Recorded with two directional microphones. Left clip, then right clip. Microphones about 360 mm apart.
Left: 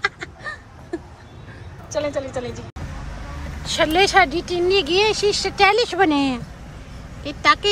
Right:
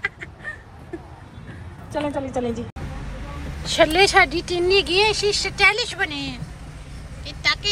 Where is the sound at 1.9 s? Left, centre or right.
Centre.